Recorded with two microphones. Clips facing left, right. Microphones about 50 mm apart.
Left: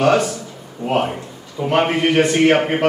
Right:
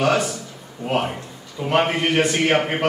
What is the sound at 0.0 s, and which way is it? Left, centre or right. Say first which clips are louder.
A man's voice: left 4 dB; centre.